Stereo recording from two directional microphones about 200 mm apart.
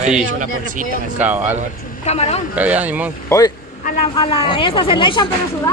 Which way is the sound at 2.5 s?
10° right (ahead or behind).